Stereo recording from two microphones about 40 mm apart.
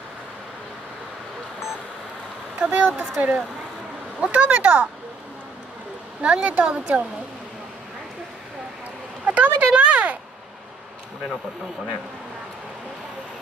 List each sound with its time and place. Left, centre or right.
2.6 s speech: right
4.3 s speech: right
6.2 s speech: right
9.2 s a sound: right